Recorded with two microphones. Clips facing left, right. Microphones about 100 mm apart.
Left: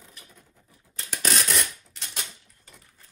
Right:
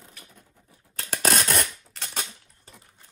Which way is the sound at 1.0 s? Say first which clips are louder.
Right 4 dB; 55° right (ahead or behind).